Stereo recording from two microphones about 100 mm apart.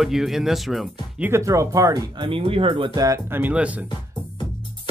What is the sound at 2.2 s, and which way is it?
Speech, 65° right (ahead or behind).